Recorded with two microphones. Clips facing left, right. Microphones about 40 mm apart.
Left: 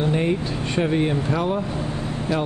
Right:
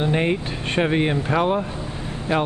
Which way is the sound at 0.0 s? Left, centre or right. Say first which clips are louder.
Even; right.